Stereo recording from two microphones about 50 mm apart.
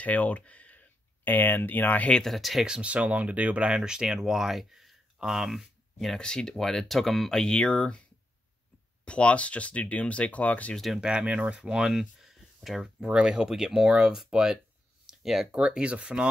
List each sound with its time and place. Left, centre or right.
0.0 s speech: left
1.2 s speech: left
2.2 s speech: centre
2.6 s speech: centre
6.1 s speech: centre
9.0 s speech: left
11.0 s speech: centre
13.8 s speech: right
15.0 s a sound: centre
15.5 s speech: right